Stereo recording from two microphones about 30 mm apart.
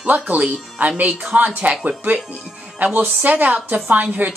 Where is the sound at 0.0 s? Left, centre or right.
Right.